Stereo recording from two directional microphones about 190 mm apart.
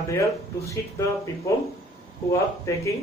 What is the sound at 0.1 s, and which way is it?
Speech, 15° left (ahead or behind).